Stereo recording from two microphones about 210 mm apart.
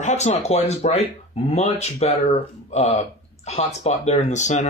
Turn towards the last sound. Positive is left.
turn(degrees=35)  # may be behind; listen again after turning